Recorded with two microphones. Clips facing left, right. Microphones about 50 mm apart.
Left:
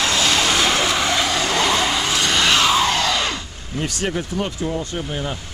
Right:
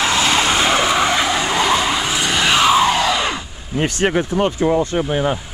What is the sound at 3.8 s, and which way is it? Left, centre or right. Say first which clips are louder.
Speech: right 6 dB; right.